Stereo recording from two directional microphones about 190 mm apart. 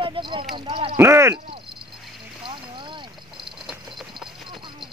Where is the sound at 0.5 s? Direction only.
25° right (ahead or behind).